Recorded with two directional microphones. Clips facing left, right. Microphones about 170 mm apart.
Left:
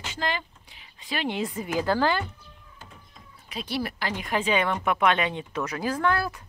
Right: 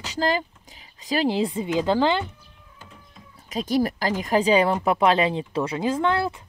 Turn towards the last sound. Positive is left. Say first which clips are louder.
# right 3 dB
turn(degrees=-25)  # may be behind; listen again after turning